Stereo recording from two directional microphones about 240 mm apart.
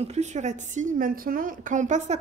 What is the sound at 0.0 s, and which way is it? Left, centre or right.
A woman's voice, right.